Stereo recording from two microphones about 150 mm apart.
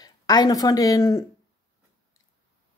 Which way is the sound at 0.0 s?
25° left (ahead or behind).